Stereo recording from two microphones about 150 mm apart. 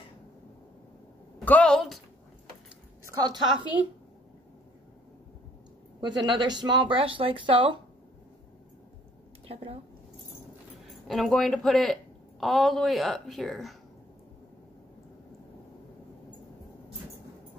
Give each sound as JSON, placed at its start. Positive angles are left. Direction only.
{"t": 1.4, "sound": "a woman's voice", "side_deg": 10}
{"t": 3.1, "sound": "a woman's voice", "side_deg": -30}
{"t": 5.9, "sound": "speech", "side_deg": -30}
{"t": 9.5, "sound": "speech", "side_deg": -40}
{"t": 10.9, "sound": "speech", "side_deg": 0}